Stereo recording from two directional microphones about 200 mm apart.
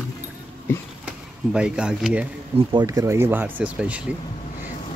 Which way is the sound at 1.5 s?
5° right (ahead or behind).